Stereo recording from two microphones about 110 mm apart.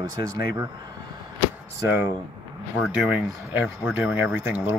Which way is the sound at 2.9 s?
15° right (ahead or behind).